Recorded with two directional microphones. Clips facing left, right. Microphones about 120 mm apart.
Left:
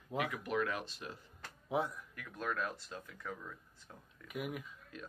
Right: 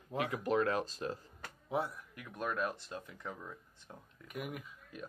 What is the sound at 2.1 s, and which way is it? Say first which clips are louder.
Speech: right 1 dB; 20° right (ahead or behind).